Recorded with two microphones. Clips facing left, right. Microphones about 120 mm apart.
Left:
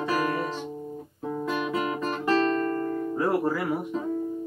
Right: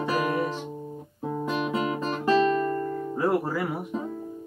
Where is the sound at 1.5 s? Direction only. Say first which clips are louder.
Right 1 dB; 25° right (ahead or behind).